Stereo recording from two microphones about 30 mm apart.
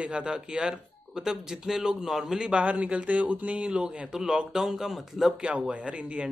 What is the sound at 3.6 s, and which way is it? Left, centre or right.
Speech, right.